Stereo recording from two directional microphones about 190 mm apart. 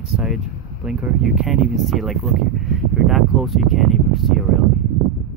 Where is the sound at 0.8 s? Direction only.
Centre (ahead or behind).